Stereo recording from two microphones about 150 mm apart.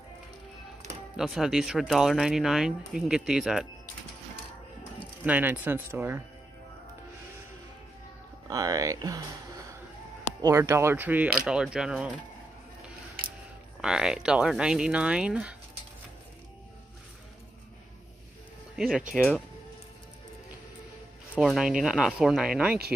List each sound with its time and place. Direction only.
1.1 s speech: centre (ahead or behind)
5.2 s speech: 10° right (ahead or behind)
8.5 s speech: 25° right (ahead or behind)
10.4 s speech: 20° right (ahead or behind)
13.7 s speech: 5° right (ahead or behind)
18.8 s speech: 5° right (ahead or behind)
21.4 s speech: 5° right (ahead or behind)